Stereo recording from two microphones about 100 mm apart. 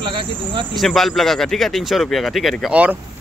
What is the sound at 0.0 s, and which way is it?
Speech, 55° right (ahead or behind).